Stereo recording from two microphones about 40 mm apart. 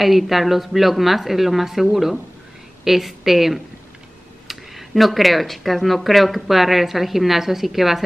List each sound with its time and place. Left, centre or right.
0.0 s speech: centre